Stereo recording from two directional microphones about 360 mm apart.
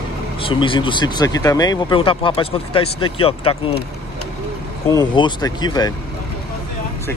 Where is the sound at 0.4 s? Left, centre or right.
Centre.